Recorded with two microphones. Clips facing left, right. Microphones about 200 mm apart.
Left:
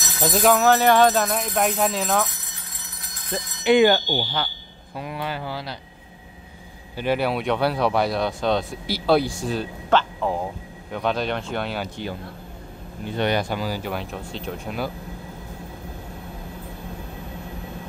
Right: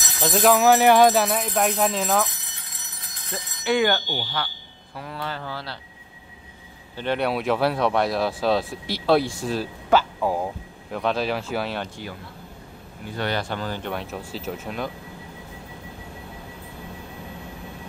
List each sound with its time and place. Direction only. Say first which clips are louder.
0.2 s speech: even; centre (ahead or behind)
3.3 s speech: left 5 dB; 20° left (ahead or behind)
7.0 s speech: left 1 dB; 5° left (ahead or behind)
13.0 s speech: left 4 dB; 20° left (ahead or behind); by 14.9 s centre (ahead or behind)